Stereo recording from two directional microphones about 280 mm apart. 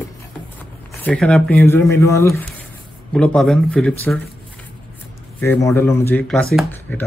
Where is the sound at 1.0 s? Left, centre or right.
Centre.